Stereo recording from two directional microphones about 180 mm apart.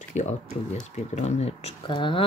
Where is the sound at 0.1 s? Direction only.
40° left (ahead or behind).